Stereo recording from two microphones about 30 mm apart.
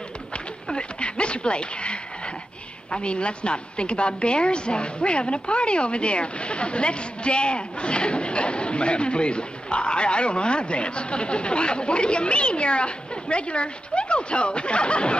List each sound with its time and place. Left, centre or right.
0.7 s a woman's voice: left